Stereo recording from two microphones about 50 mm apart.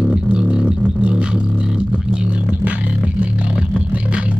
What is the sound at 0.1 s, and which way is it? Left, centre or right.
Music, centre.